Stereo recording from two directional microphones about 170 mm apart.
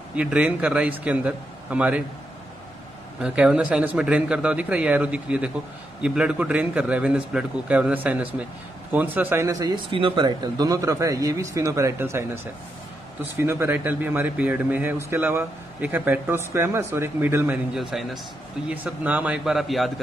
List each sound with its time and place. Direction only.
0.1 s speech: 5° right (ahead or behind)
3.2 s speech: 5° right (ahead or behind)
17.7 s speech: centre (ahead or behind)